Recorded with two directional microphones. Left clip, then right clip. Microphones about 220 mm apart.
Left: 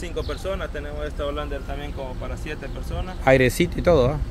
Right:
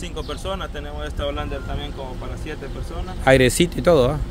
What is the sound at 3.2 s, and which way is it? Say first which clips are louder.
Speech: right 2 dB; 15° right (ahead or behind).